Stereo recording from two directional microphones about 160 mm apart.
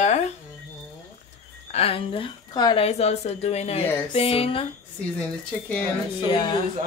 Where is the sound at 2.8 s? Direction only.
40° left (ahead or behind).